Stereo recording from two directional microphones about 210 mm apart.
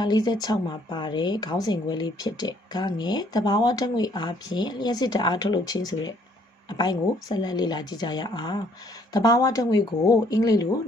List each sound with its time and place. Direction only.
0.0 s speech: 20° left (ahead or behind)